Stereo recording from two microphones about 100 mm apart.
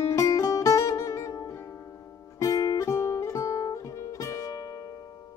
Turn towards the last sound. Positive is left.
turn(degrees=35)  # may be behind; listen again after turning